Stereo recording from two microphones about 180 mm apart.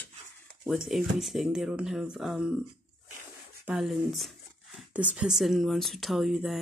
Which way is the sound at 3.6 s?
Centre (ahead or behind).